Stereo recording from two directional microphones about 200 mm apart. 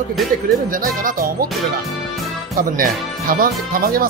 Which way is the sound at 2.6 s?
45° right (ahead or behind).